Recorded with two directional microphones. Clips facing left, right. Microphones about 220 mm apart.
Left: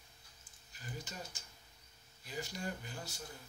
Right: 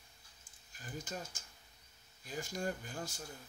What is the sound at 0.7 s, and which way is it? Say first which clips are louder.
Speech: right 3 dB; 50° right (ahead or behind).